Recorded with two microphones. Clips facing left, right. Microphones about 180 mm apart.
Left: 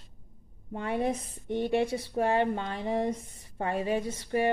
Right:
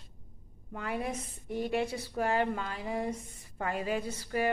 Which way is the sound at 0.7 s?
30° left (ahead or behind).